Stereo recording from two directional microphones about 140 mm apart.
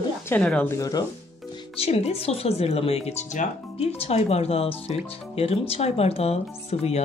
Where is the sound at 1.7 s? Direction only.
45° left (ahead or behind).